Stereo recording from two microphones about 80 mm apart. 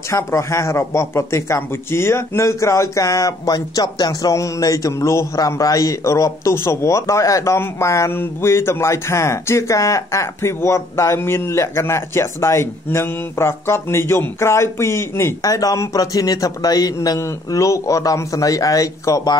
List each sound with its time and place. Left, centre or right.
0.1 s speech: left
15.4 s a man's voice: left